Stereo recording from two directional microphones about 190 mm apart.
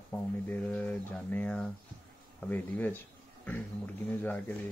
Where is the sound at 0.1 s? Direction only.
5° left (ahead or behind).